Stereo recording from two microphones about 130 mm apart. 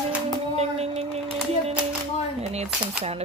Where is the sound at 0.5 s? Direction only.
50° right (ahead or behind).